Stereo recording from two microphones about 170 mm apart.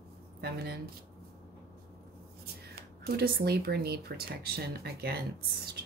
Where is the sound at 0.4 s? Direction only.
70° right (ahead or behind).